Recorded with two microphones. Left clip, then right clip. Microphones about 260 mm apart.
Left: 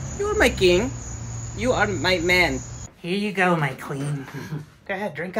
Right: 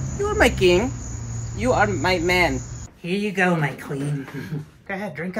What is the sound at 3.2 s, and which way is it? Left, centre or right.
Speech, left.